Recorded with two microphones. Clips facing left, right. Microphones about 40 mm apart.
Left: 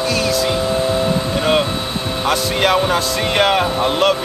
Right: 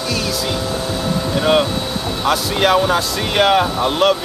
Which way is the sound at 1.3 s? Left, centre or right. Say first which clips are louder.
Right 5 dB; centre.